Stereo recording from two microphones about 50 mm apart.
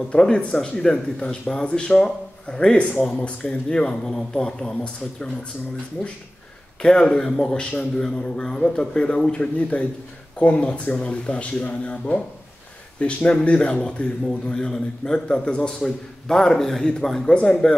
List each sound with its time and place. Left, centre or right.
0.1 s speech: left
6.8 s speech: centre